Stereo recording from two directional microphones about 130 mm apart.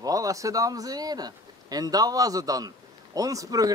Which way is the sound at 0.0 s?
25° right (ahead or behind).